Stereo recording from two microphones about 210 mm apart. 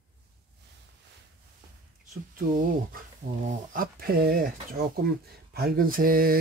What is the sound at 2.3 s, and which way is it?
Speech, 40° right (ahead or behind).